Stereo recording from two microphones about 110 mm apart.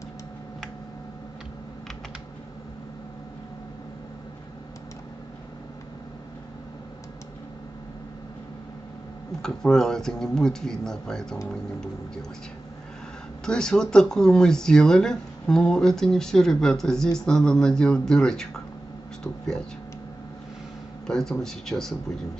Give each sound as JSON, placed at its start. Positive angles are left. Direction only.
{"t": 9.4, "sound": "speech", "side_deg": 5}
{"t": 13.5, "sound": "speech", "side_deg": 5}
{"t": 21.1, "sound": "speech", "side_deg": 5}